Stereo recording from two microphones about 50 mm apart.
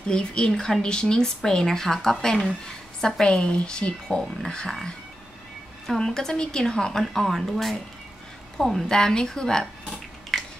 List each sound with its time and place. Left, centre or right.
0.1 s speech: centre
5.9 s a woman's voice: centre
8.8 s a sound: centre